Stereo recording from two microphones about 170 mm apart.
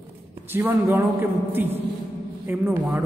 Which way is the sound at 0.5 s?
10° right (ahead or behind).